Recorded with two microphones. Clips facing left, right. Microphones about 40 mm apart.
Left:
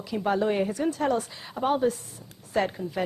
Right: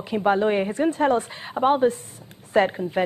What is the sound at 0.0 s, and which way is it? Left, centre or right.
A woman's voice, right.